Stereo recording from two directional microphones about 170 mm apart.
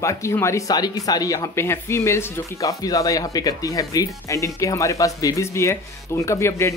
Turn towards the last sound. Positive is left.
turn(degrees=15)  # may be behind; listen again after turning